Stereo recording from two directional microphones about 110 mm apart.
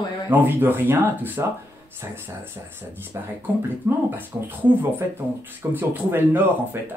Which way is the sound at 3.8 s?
20° right (ahead or behind).